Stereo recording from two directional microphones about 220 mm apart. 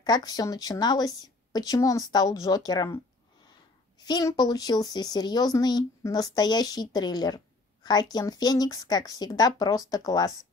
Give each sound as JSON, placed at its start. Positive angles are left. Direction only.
{"t": 0.0, "sound": "speech", "side_deg": 15}
{"t": 4.0, "sound": "speech", "side_deg": 15}